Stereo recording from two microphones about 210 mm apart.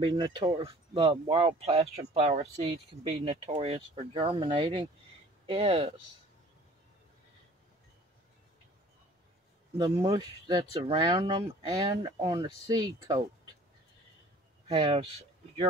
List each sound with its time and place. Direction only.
0.0 s speech: 20° right (ahead or behind)
9.8 s speech: 20° right (ahead or behind)
14.7 s speech: 25° right (ahead or behind)